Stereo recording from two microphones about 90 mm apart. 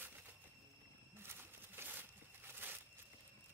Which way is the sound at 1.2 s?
25° right (ahead or behind).